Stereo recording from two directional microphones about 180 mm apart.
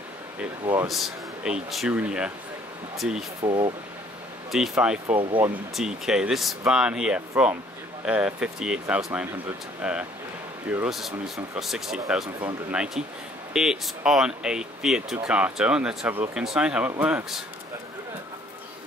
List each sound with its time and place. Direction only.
0.4 s speech: 10° right (ahead or behind)
3.4 s speech: 25° right (ahead or behind)
4.5 s speech: 5° right (ahead or behind)